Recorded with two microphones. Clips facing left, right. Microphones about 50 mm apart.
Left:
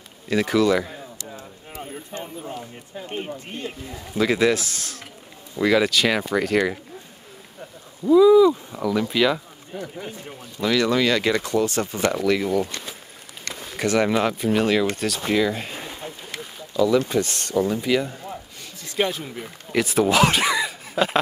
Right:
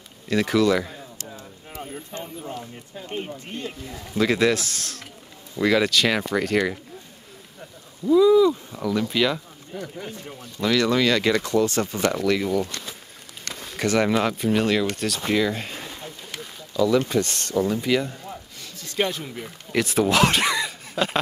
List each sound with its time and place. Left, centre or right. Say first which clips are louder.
0.3 s speech: left 1 dB; centre
1.7 s a sound: even; centre
3.1 s speech: even; centre
8.1 s speech: left 3 dB; centre
11.3 s speech: right 1 dB; left
11.8 s speech: left 1 dB; centre
16.3 s a sound: left 1 dB; centre
17.1 s a man's voice: left 1 dB; centre